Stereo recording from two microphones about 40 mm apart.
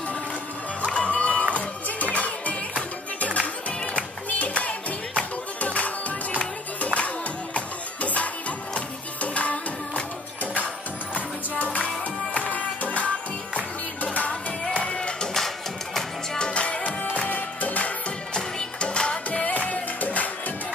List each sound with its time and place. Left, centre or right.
0.8 s music: left
15.3 s music: centre
16.3 s music: left
18.3 s music: left